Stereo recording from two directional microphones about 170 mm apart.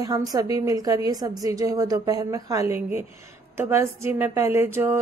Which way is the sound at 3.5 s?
15° right (ahead or behind).